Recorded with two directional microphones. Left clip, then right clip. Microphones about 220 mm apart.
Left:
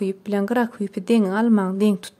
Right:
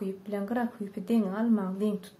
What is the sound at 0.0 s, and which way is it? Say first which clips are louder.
A woman's voice: left 10 dB; 45° left (ahead or behind).